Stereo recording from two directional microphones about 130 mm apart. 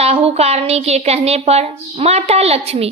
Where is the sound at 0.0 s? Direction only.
55° right (ahead or behind).